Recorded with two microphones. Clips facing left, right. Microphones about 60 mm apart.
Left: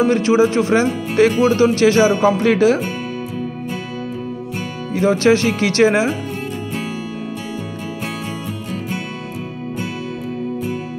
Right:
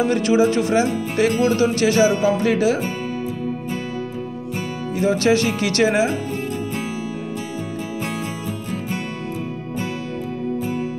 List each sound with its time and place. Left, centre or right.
0.0 s speech: left
4.9 s speech: left